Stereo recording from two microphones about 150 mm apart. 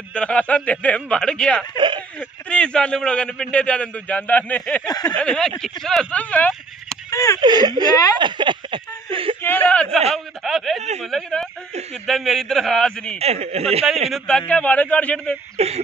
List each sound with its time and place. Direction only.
0.1 s a man's voice: 5° left (ahead or behind)
1.8 s speech: 30° right (ahead or behind)
2.1 s a man's voice: 5° left (ahead or behind)
4.8 s a sound: 25° left (ahead or behind)
5.1 s speech: 5° left (ahead or behind)
7.3 s speech: 25° right (ahead or behind)
8.2 s a sound: 30° right (ahead or behind)
9.4 s a sound: 10° left (ahead or behind)
10.1 s a man's voice: centre (ahead or behind)
13.2 s speech: 45° right (ahead or behind)
14.1 s a man's voice: 5° left (ahead or behind)
15.5 s speech: 45° right (ahead or behind)